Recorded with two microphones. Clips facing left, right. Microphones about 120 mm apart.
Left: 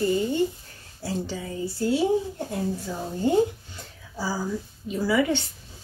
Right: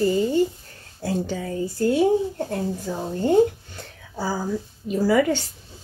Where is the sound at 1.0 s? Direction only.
50° right (ahead or behind).